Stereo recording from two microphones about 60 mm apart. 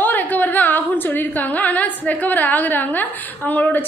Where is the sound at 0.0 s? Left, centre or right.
Left.